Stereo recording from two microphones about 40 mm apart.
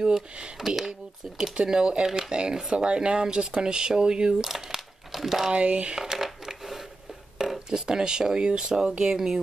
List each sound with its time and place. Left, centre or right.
0.6 s speech: centre
1.4 s speech: right
2.3 s speech: right
4.4 s speech: centre
5.5 s speech: right
6.1 s crushing: centre
7.3 s speech: centre